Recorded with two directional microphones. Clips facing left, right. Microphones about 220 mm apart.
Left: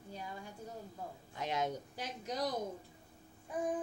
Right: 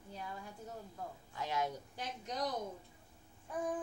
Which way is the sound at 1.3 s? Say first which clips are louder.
Left 1 dB; 20° left (ahead or behind).